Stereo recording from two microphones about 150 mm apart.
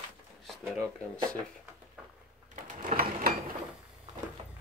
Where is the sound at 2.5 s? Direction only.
55° right (ahead or behind).